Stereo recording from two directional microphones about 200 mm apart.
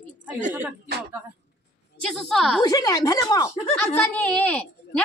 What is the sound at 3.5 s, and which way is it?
Speech, 30° left (ahead or behind).